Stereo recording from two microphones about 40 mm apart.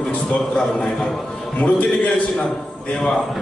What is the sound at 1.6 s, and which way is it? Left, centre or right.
Speech, left.